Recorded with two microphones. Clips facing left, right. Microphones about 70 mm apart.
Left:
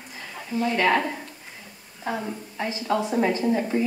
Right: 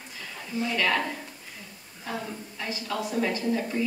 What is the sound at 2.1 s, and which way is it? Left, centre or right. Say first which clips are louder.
Speech: left 5 dB; centre.